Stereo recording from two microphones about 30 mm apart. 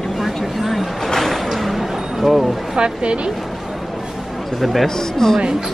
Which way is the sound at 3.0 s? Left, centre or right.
Right.